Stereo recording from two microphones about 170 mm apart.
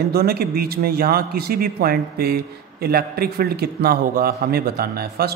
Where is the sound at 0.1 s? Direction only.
65° right (ahead or behind).